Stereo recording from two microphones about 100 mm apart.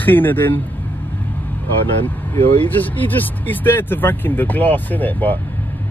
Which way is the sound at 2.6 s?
20° left (ahead or behind).